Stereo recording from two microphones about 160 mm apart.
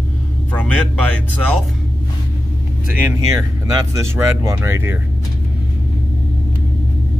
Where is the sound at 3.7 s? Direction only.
20° right (ahead or behind).